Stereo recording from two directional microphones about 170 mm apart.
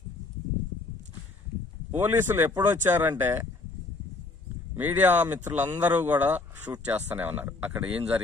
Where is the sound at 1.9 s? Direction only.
10° right (ahead or behind).